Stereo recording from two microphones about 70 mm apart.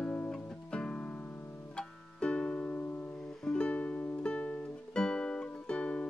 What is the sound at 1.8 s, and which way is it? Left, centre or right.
Music, centre.